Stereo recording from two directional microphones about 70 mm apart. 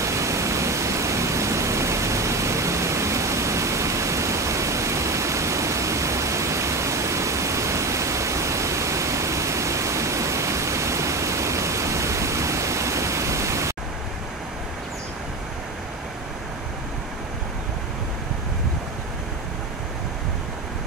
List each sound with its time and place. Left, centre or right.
0.0 s pink noise: right